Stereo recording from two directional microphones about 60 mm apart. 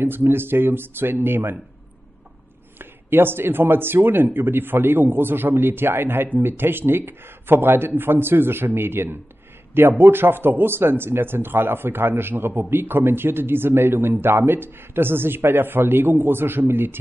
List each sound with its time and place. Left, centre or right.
0.0 s speech: right
2.8 s speech: right